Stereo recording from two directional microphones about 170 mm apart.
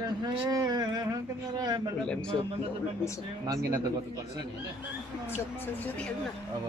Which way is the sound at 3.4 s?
25° right (ahead or behind).